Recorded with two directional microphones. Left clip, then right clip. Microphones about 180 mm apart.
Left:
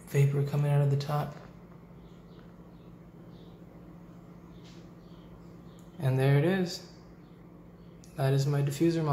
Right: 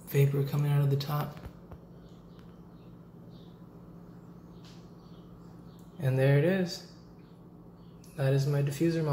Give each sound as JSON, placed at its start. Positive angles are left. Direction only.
{"t": 0.1, "sound": "speech", "side_deg": 0}
{"t": 5.9, "sound": "speech", "side_deg": 0}
{"t": 8.2, "sound": "speech", "side_deg": 0}